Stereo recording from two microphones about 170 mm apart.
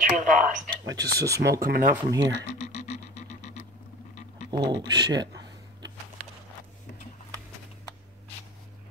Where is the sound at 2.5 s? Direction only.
40° left (ahead or behind).